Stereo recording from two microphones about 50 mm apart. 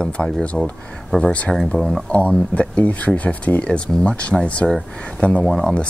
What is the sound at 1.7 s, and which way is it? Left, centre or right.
Speech, centre.